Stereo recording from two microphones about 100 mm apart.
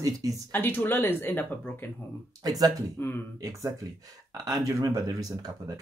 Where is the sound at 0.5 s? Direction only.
20° left (ahead or behind).